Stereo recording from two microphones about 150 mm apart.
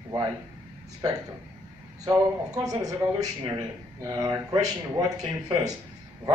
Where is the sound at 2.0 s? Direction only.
25° right (ahead or behind).